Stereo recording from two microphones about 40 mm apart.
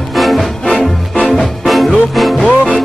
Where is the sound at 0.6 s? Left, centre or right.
Left.